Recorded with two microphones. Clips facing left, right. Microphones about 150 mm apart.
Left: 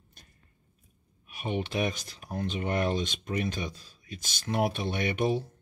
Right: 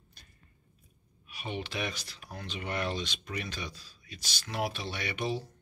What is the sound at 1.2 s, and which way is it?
Speech, 45° left (ahead or behind).